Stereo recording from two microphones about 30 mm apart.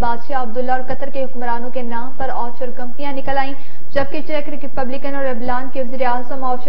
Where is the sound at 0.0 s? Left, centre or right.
Centre.